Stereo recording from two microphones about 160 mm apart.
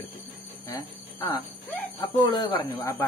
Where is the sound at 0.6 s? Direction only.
25° left (ahead or behind).